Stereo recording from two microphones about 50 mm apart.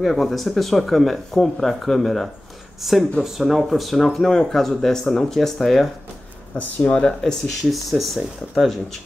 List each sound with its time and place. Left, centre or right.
0.0 s speech: centre
6.5 s speech: left
7.6 s speech: centre